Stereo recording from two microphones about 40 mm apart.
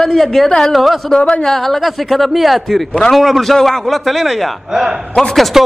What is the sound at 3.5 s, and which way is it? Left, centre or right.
Speech, centre.